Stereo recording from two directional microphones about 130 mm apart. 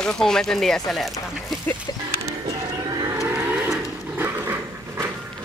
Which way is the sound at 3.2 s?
20° right (ahead or behind).